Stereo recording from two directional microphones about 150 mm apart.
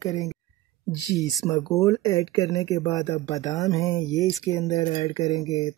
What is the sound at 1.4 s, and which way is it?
Speech, 15° left (ahead or behind).